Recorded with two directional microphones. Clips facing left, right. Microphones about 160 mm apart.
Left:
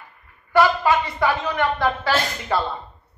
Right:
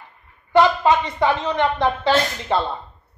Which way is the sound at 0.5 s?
20° right (ahead or behind).